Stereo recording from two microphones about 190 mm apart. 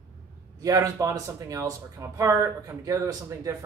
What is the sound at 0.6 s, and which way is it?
Speech, 15° right (ahead or behind).